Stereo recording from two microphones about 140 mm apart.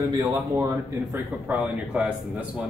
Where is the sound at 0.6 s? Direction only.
25° right (ahead or behind).